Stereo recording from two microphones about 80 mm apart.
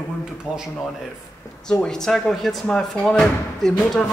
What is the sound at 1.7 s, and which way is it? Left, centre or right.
Speech, centre.